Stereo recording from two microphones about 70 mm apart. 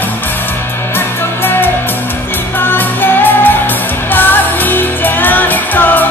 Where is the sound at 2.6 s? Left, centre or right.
Left.